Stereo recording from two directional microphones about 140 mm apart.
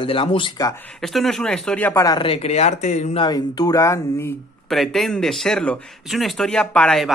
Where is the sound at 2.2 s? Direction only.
45° left (ahead or behind).